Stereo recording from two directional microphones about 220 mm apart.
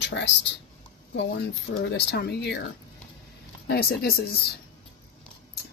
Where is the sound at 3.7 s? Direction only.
45° left (ahead or behind).